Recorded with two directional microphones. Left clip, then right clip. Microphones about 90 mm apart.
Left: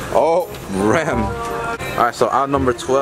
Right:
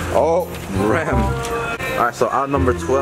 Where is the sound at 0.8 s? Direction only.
35° left (ahead or behind).